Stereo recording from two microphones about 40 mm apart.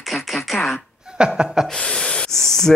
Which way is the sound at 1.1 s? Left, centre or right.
Right.